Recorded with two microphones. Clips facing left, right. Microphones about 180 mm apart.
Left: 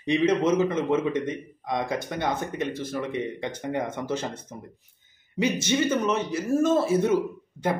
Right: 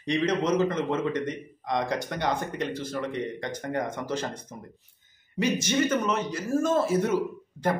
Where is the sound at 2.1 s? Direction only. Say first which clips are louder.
Left 1 dB; 5° left (ahead or behind).